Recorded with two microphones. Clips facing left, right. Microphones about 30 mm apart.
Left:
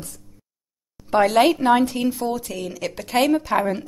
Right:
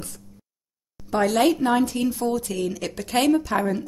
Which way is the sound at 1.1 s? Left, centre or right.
Left.